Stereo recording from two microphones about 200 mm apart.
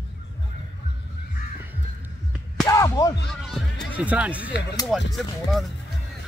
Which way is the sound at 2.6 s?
15° left (ahead or behind).